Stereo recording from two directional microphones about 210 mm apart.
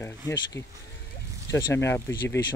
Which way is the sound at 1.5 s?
15° left (ahead or behind).